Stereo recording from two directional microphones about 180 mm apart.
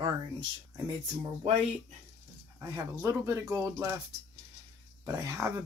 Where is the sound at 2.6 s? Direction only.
15° right (ahead or behind).